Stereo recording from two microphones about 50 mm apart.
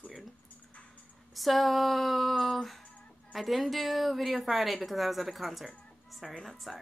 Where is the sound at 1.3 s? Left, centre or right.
Centre.